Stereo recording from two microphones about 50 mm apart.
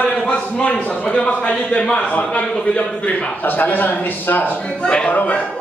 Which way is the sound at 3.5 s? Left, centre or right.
Left.